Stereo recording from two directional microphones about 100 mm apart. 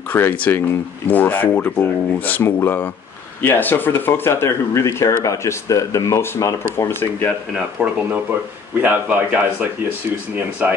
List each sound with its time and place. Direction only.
0.1 s speech: 20° left (ahead or behind)
7.5 s speech: 15° right (ahead or behind)